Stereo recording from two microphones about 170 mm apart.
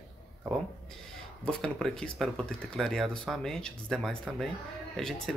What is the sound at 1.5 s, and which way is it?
Speech, 5° left (ahead or behind).